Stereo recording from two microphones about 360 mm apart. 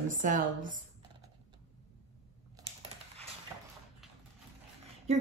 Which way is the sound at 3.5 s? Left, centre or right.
Centre.